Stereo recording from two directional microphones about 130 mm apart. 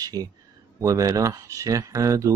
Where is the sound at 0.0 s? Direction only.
30° right (ahead or behind).